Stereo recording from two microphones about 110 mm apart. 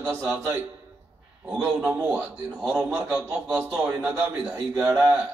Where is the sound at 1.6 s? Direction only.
20° right (ahead or behind).